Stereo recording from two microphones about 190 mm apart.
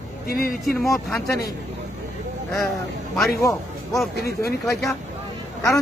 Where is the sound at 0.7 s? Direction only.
Centre (ahead or behind).